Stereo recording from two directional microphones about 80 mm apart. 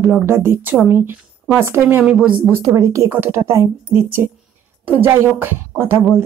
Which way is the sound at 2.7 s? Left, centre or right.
Right.